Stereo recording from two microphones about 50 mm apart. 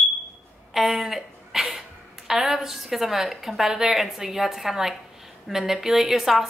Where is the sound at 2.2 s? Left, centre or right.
Centre.